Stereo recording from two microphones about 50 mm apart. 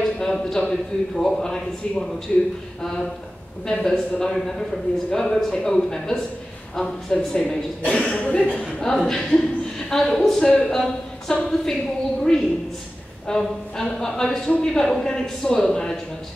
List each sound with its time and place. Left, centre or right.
0.0 s a man's voice: centre
7.3 s speech: left
8.9 s a woman's voice: centre